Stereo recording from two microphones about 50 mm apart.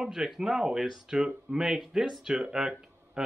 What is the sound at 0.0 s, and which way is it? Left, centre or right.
Speech, centre.